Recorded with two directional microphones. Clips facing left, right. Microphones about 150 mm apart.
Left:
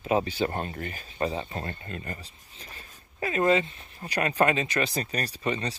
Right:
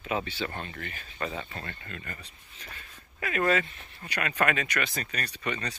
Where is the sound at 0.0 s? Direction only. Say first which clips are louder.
Left 6 dB; 35° left (ahead or behind).